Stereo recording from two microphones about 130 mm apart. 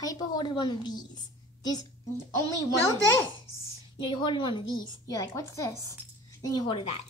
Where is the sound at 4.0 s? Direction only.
35° left (ahead or behind).